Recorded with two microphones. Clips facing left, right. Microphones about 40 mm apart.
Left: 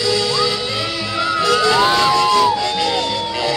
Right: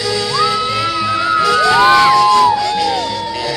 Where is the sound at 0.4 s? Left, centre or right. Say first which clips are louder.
Right 4 dB; centre.